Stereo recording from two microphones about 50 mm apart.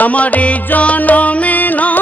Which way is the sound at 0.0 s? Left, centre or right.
Left.